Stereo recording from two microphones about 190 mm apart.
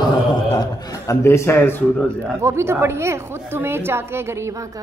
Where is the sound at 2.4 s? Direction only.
15° right (ahead or behind).